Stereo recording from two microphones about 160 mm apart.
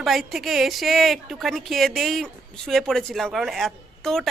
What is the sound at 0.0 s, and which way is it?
A woman's voice, centre (ahead or behind).